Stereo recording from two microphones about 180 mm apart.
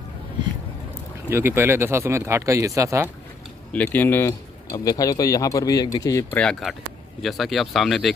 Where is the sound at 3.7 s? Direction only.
10° left (ahead or behind).